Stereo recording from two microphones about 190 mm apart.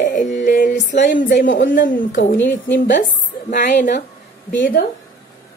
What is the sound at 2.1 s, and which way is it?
Speech, 75° left (ahead or behind).